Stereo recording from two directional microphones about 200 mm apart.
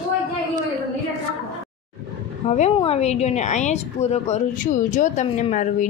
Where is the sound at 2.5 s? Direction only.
35° left (ahead or behind).